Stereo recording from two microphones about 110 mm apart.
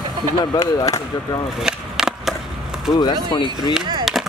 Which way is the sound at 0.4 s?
35° left (ahead or behind).